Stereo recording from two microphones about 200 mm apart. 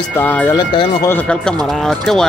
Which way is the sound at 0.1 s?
10° left (ahead or behind).